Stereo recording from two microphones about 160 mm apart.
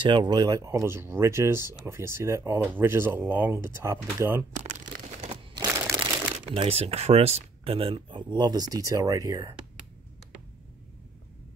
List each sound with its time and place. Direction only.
0.0 s speech: 30° right (ahead or behind)
4.6 s crumpling: 45° right (ahead or behind)
5.3 s crumpling: 30° right (ahead or behind)
6.5 s speech: 35° right (ahead or behind)